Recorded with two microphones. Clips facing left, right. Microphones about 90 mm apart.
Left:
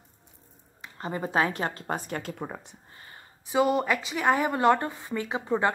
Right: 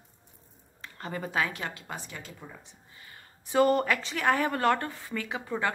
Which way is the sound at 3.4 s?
10° left (ahead or behind).